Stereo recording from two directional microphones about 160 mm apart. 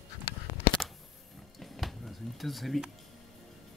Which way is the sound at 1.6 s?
Centre (ahead or behind).